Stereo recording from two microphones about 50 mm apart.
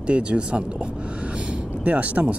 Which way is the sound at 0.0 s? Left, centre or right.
Right.